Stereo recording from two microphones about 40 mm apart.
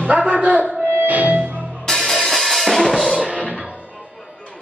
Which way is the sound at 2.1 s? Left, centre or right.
Centre.